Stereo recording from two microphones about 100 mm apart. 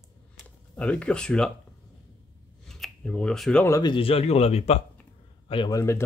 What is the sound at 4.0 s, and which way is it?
Speech, 75° left (ahead or behind).